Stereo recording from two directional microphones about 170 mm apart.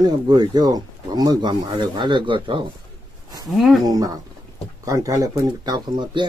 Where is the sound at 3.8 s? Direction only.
20° right (ahead or behind).